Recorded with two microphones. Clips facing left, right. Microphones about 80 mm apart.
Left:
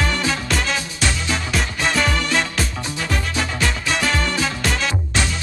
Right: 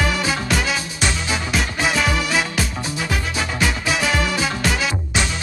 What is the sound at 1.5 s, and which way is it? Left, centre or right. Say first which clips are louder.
Music: right 1 dB; centre.